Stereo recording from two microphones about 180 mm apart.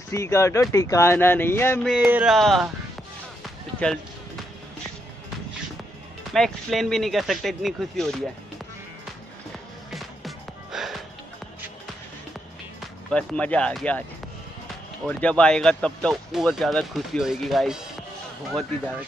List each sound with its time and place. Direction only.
0.1 s speech: 15° left (ahead or behind)
1.9 s speech: 5° right (ahead or behind)
6.3 s speech: centre (ahead or behind)
9.8 s music: centre (ahead or behind)
13.1 s speech: 5° left (ahead or behind)
15.0 s speech: 5° left (ahead or behind)